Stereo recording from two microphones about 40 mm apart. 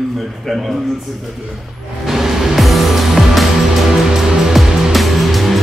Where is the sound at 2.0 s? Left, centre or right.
Centre.